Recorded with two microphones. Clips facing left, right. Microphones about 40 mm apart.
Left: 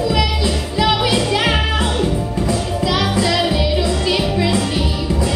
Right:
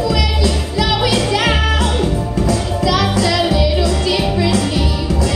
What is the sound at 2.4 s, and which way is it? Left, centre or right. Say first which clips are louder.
Music: right 3 dB; centre.